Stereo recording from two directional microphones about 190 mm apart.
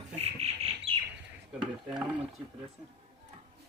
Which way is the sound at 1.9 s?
5° right (ahead or behind).